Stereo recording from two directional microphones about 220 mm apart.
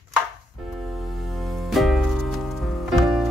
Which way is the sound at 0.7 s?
Centre (ahead or behind).